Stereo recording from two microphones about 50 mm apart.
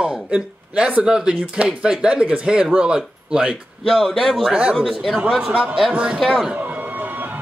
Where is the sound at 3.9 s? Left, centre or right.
Centre.